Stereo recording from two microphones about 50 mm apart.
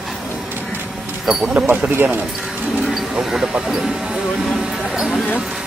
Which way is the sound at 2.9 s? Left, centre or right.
Centre.